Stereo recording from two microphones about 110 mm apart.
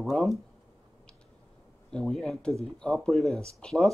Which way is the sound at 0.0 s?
Centre (ahead or behind).